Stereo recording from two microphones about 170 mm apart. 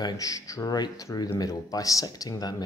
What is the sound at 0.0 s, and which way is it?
Speech, 20° left (ahead or behind).